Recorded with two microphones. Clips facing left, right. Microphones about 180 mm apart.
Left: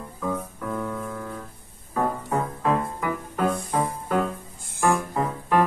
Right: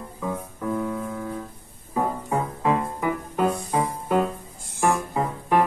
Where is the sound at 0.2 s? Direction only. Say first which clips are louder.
Even; 10° right (ahead or behind).